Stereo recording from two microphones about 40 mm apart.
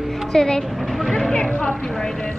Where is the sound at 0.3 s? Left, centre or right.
Centre.